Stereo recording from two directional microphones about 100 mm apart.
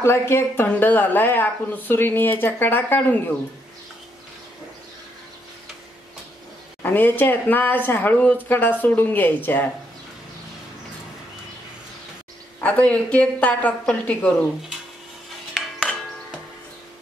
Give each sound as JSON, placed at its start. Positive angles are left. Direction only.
{"t": 0.0, "sound": "a woman's voice", "side_deg": 25}
{"t": 6.8, "sound": "a woman's voice", "side_deg": 20}
{"t": 12.5, "sound": "a woman's voice", "side_deg": 15}